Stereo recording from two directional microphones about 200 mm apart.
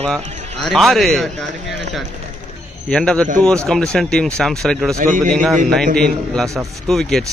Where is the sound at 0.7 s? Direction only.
Centre (ahead or behind).